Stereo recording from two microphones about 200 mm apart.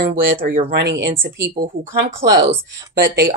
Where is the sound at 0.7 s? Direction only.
60° right (ahead or behind).